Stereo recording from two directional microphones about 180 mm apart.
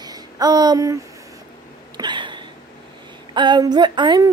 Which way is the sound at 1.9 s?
25° right (ahead or behind).